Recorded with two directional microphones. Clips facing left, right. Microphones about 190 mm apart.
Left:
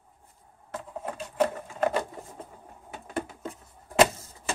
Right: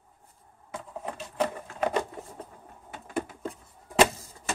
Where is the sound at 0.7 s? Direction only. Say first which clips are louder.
Left 2 dB; 5° left (ahead or behind).